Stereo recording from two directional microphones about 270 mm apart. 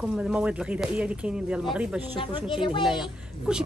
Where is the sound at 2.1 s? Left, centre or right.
Centre.